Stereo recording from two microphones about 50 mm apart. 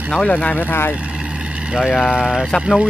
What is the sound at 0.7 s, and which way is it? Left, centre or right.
Speech, left.